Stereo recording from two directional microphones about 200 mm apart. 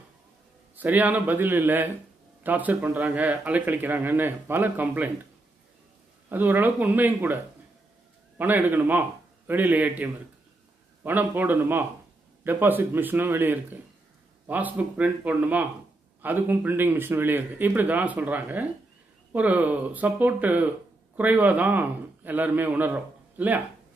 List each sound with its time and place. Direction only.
0.7 s speech: 10° right (ahead or behind)
6.2 s speech: 10° right (ahead or behind)
8.4 s a man's voice: 10° right (ahead or behind)